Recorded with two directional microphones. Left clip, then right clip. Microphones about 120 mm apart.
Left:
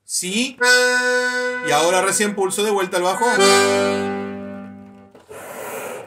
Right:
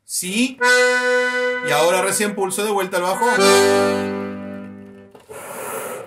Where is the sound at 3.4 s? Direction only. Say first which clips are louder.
Right 2 dB; 50° right (ahead or behind).